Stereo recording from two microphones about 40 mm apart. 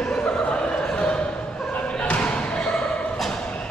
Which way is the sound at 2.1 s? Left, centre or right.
Left.